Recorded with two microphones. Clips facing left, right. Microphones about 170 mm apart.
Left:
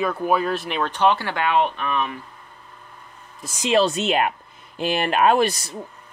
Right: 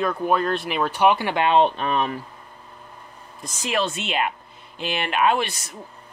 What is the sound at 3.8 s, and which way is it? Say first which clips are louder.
Speech: left 5 dB; 40° left (ahead or behind).